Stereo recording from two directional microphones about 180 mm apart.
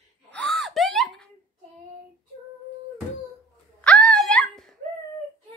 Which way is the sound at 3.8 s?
5° left (ahead or behind).